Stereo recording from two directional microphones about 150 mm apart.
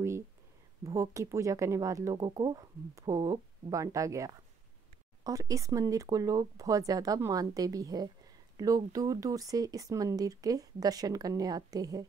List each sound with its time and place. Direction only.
0.8 s speech: 20° right (ahead or behind)